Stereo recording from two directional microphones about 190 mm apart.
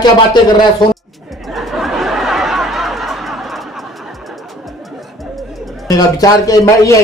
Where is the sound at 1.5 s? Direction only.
Centre (ahead or behind).